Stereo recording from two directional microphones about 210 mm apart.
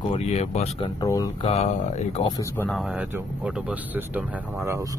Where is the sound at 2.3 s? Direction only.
10° left (ahead or behind).